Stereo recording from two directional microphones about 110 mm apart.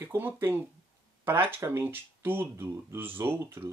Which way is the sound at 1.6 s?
20° right (ahead or behind).